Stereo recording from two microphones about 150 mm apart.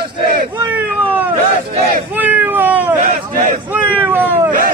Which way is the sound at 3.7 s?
15° right (ahead or behind).